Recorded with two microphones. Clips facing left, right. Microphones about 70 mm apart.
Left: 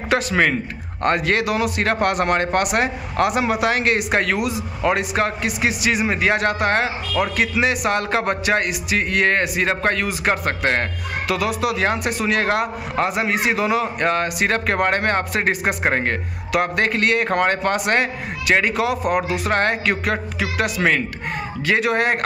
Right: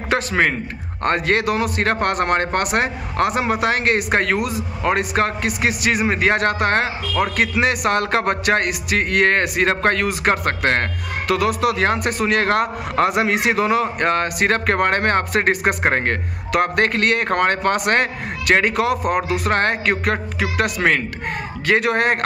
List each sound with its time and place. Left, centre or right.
0.1 s a man's voice: right
13.7 s speech: right